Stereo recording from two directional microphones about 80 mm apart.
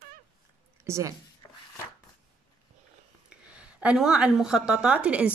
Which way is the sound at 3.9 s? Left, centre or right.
Centre.